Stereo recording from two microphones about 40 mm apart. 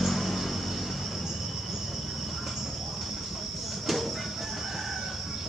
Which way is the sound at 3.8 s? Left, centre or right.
Centre.